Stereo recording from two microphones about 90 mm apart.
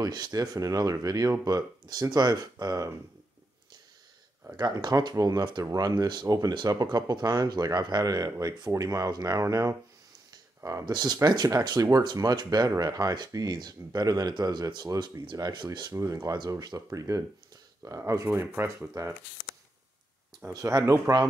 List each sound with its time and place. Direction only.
0.0 s speech: 45° right (ahead or behind)
4.6 s speech: 45° right (ahead or behind)
15.9 s speech: 40° right (ahead or behind)
20.4 s speech: 30° right (ahead or behind)